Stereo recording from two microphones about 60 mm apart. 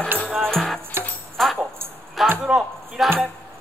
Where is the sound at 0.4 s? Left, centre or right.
Centre.